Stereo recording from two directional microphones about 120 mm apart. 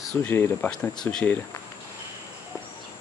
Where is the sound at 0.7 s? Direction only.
5° left (ahead or behind).